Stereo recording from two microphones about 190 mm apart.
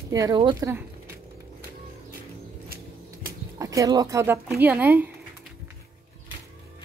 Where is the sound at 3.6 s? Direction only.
15° right (ahead or behind).